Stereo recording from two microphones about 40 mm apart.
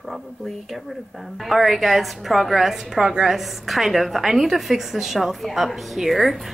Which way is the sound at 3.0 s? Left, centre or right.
Centre.